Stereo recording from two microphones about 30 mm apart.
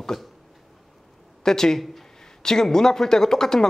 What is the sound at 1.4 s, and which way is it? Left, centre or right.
A man's voice, centre.